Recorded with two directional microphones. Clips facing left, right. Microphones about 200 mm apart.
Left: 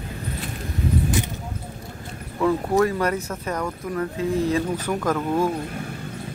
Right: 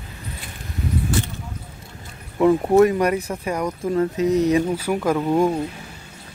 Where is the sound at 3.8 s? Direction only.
25° right (ahead or behind).